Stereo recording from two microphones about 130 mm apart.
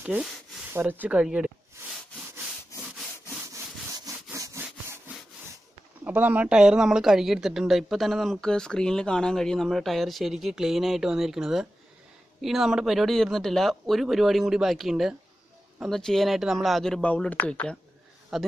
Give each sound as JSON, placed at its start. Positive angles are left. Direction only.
{"t": 0.0, "sound": "speech", "side_deg": -10}
{"t": 3.4, "sound": "sawing", "side_deg": -25}
{"t": 6.0, "sound": "speech", "side_deg": -10}